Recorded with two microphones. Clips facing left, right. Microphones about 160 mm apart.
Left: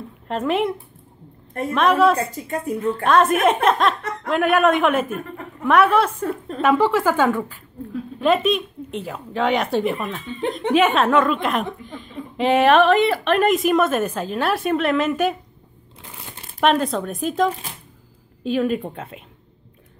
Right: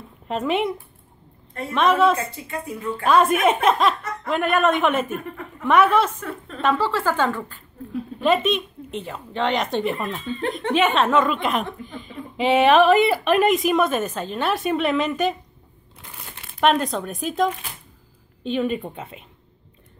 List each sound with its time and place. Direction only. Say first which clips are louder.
0.3 s speech: left 1 dB; centre (ahead or behind)
1.7 s speech: left 1 dB; centre (ahead or behind)
2.1 s a woman's voice: left 4 dB; 40° left (ahead or behind)
2.9 s speech: left 1 dB; centre (ahead or behind)
6.2 s a sound: left 7 dB; 35° left (ahead or behind)
6.6 s speech: left 4 dB; 15° left (ahead or behind)
7.9 s speech: left 1 dB; centre (ahead or behind)
16.5 s speech: left 1 dB; centre (ahead or behind)